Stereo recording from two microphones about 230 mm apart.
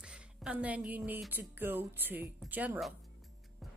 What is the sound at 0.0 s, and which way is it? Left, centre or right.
Speech, centre.